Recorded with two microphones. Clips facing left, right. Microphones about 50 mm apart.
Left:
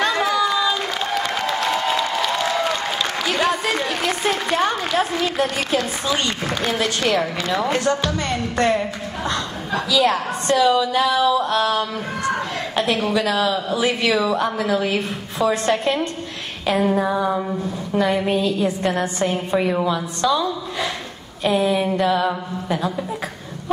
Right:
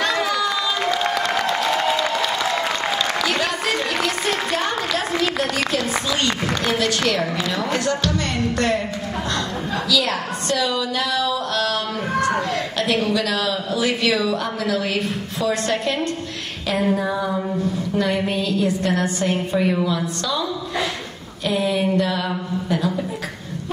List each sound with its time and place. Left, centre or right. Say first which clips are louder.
0.0 s run: left 2 dB; centre
7.1 s a woman's voice: left 1 dB; left
21.5 s a woman's voice: left 2 dB; left